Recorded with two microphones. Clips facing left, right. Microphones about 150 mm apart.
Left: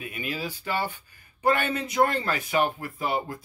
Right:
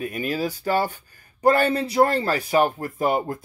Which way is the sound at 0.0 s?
40° right (ahead or behind).